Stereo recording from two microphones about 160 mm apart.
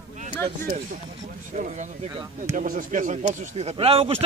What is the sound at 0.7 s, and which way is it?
A man's voice, 50° right (ahead or behind).